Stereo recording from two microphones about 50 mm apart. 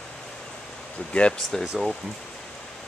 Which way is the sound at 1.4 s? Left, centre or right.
Centre.